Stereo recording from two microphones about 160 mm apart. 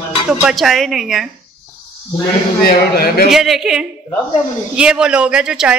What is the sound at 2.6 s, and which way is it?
Speech, 75° left (ahead or behind).